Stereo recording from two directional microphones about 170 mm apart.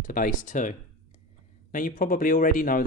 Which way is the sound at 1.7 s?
55° left (ahead or behind).